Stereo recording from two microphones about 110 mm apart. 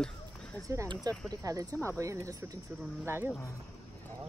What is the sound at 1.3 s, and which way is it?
Speech, 30° right (ahead or behind).